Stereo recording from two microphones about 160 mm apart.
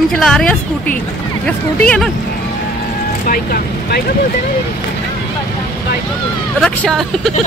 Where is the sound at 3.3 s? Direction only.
65° left (ahead or behind).